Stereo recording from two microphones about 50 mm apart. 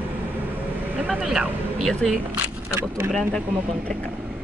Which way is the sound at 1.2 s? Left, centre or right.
Centre.